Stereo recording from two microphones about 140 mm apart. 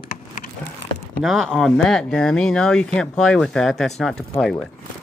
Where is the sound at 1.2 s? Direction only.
Centre (ahead or behind).